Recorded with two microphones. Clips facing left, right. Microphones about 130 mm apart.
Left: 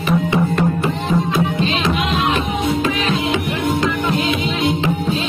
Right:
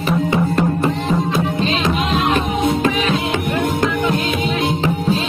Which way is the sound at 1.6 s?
40° right (ahead or behind).